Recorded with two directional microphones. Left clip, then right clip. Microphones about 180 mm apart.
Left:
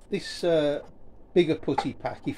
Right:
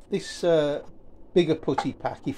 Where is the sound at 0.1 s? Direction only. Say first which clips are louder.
Right 2 dB; 20° right (ahead or behind).